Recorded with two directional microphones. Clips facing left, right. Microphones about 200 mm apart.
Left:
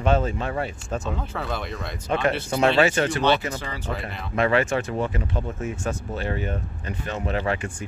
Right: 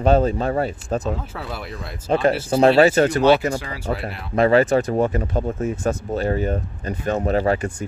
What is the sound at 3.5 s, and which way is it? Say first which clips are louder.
Speech: right 5 dB; 10° right (ahead or behind).